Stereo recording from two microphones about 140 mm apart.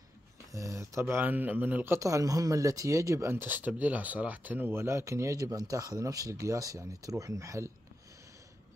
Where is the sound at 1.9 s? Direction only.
25° right (ahead or behind).